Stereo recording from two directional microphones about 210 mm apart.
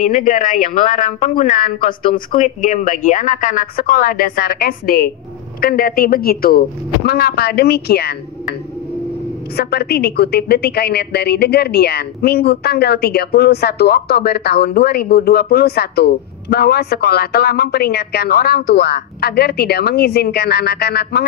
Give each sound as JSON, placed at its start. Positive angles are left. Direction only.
{"t": 0.1, "sound": "speech", "side_deg": 40}
{"t": 2.1, "sound": "a woman's voice", "side_deg": 35}
{"t": 9.6, "sound": "a woman's voice", "side_deg": 50}